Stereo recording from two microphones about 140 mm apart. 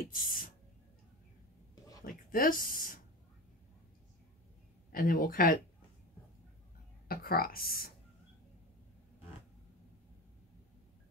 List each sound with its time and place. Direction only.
0.0 s a sound: 90° left
2.3 s speech: 90° left
4.9 s speech: 90° left
7.1 s speech: 90° left